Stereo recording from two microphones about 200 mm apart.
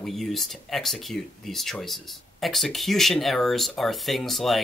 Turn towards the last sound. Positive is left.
turn(degrees=0)  # may be behind; listen again after turning